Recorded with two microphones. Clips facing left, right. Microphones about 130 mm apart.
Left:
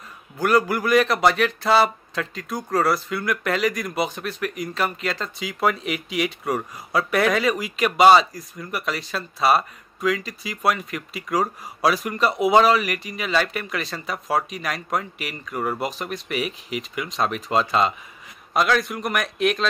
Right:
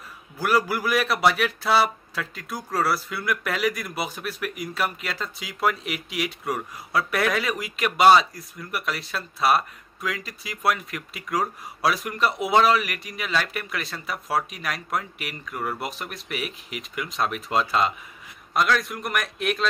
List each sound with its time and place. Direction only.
0.4 s a man's voice: 5° right (ahead or behind)